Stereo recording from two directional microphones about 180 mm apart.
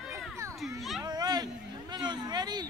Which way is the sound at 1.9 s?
25° right (ahead or behind).